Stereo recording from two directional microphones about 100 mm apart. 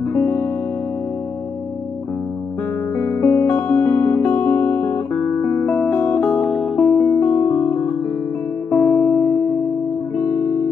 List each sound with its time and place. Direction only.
0.1 s music: 20° left (ahead or behind)
3.0 s music: 20° left (ahead or behind)
3.5 s music: 10° left (ahead or behind)
5.1 s guitar: 10° left (ahead or behind)
5.5 s music: 20° left (ahead or behind)